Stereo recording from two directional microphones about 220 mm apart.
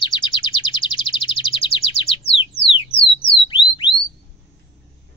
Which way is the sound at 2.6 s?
25° left (ahead or behind).